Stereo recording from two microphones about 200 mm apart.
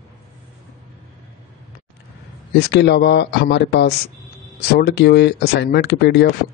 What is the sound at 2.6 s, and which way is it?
Speech, 60° left (ahead or behind).